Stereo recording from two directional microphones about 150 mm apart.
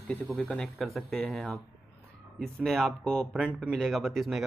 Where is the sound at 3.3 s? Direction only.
5° right (ahead or behind).